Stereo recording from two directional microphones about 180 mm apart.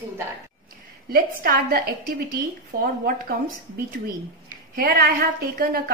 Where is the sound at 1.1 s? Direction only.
55° right (ahead or behind).